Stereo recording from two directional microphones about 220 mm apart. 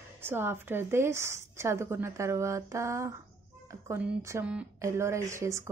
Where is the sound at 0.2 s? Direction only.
10° right (ahead or behind).